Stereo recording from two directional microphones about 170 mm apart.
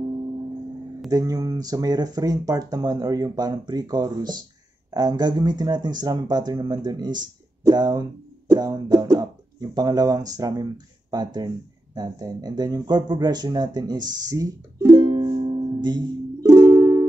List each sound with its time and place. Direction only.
1.1 s speech: 20° right (ahead or behind)
14.9 s music: 30° right (ahead or behind)